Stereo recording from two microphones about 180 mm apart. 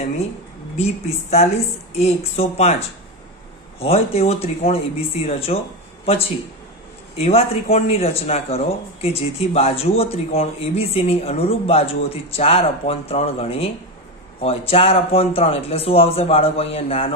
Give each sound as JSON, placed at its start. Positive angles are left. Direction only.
{"t": 0.7, "sound": "speech", "side_deg": 35}
{"t": 3.8, "sound": "speech", "side_deg": 35}